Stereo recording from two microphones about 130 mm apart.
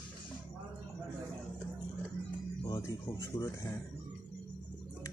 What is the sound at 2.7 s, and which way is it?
Speech, 25° left (ahead or behind).